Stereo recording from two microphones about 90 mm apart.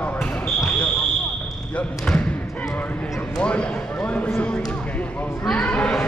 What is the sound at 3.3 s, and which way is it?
Basketball bounce, 10° left (ahead or behind).